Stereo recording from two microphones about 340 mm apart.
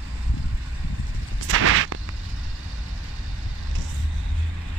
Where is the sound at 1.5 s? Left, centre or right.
Right.